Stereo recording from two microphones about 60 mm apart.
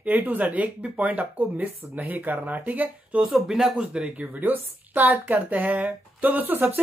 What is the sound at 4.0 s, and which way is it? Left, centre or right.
Speech, right.